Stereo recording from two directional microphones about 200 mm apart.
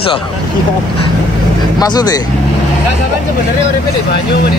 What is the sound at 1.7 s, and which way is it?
Speech, 20° left (ahead or behind).